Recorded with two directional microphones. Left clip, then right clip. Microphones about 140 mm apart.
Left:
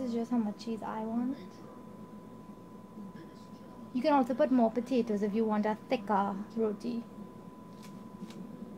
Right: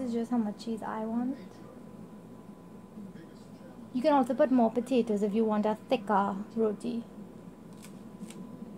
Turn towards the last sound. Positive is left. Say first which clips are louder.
# right 3 dB
turn(degrees=-25)  # may be behind; listen again after turning